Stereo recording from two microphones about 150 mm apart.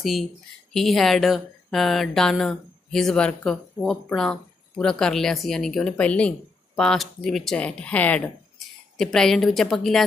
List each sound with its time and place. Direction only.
0.0 s speech: centre (ahead or behind)